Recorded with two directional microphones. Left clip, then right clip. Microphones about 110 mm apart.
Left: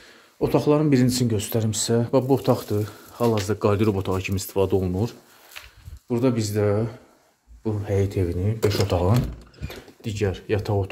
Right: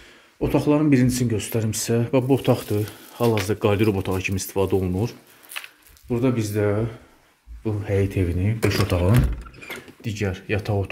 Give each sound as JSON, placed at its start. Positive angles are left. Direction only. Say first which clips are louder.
{"t": 0.4, "sound": "speech", "louder": "even", "side_deg": 25}
{"t": 2.5, "sound": "speech", "louder": "right 1 dB", "side_deg": 0}
{"t": 10.0, "sound": "speech", "louder": "left 2 dB", "side_deg": 15}